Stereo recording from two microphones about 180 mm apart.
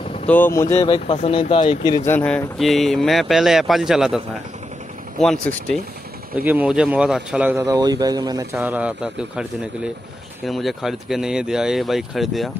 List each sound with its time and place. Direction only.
0.3 s speech: 15° left (ahead or behind)
0.8 s speech: 30° left (ahead or behind)
2.0 s speech: 10° left (ahead or behind)
5.2 s speech: 5° left (ahead or behind)
6.3 s speech: 10° right (ahead or behind)
8.5 s speech: 5° right (ahead or behind)